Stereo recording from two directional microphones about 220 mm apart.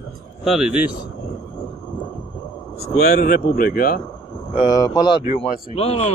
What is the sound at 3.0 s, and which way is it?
A man's voice, 40° left (ahead or behind).